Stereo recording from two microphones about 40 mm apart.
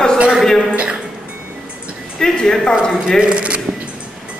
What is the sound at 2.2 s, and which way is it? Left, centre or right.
Speech, centre.